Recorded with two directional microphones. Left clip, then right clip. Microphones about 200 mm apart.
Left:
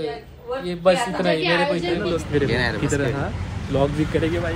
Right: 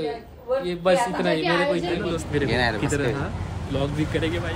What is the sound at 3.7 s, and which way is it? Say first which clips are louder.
Speech: left 5 dB; 5° left (ahead or behind).